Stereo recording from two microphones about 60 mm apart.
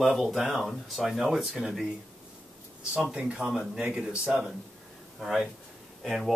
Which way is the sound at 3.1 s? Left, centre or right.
Centre.